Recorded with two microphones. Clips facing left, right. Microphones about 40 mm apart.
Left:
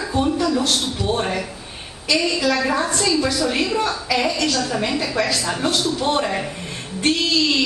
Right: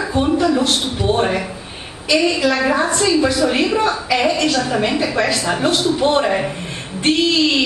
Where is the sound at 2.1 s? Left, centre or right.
Centre.